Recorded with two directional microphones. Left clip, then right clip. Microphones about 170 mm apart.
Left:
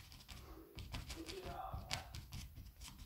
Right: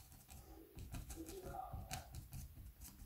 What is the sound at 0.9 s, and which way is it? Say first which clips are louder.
Music: left 4 dB; 20° right (ahead or behind).